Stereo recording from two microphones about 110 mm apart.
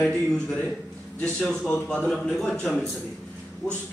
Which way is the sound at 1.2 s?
10° left (ahead or behind).